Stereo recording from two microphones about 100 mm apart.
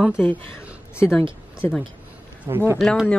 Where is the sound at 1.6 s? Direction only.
15° left (ahead or behind).